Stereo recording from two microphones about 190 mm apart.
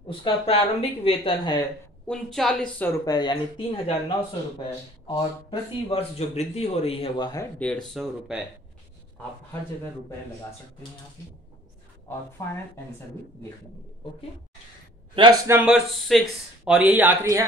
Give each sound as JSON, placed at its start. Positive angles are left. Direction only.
{"t": 0.1, "sound": "a woman's voice", "side_deg": 30}
{"t": 2.0, "sound": "speech", "side_deg": 0}
{"t": 3.1, "sound": "a woman's voice", "side_deg": 20}
{"t": 5.0, "sound": "speech", "side_deg": 25}
{"t": 7.5, "sound": "speech", "side_deg": 5}
{"t": 12.4, "sound": "speech", "side_deg": 15}
{"t": 15.1, "sound": "a man's voice", "side_deg": -25}
{"t": 15.5, "sound": "speech", "side_deg": -5}